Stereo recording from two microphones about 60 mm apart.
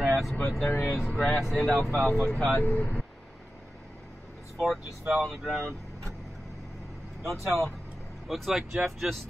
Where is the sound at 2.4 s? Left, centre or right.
Left.